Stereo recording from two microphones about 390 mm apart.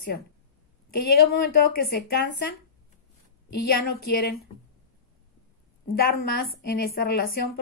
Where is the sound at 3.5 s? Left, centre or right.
Left.